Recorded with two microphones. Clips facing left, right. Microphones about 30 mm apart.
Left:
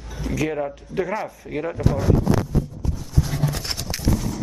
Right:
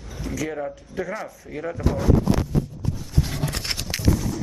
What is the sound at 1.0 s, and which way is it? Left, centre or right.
Speech, centre.